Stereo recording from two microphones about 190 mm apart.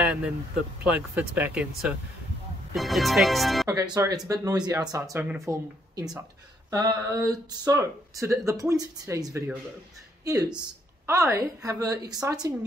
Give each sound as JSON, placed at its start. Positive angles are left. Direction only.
{"t": 0.8, "sound": "speech", "side_deg": -10}
{"t": 3.6, "sound": "speech", "side_deg": -20}